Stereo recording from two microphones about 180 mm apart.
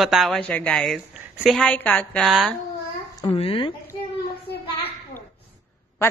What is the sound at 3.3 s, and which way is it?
Speech, 30° left (ahead or behind).